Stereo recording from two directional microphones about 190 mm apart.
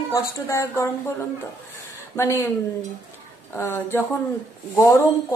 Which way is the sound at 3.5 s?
10° left (ahead or behind).